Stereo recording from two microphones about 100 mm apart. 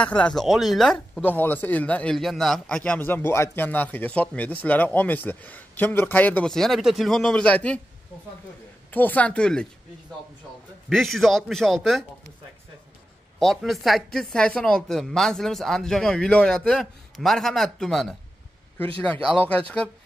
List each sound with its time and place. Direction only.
0.0 s speech: 10° left (ahead or behind)
1.2 s a man's voice: 20° left (ahead or behind)
2.1 s a man's voice: centre (ahead or behind)
6.5 s speech: centre (ahead or behind)
8.9 s a man's voice: 15° left (ahead or behind)
10.9 s speech: centre (ahead or behind)
13.4 s speech: centre (ahead or behind)
19.3 s a man's voice: 15° left (ahead or behind)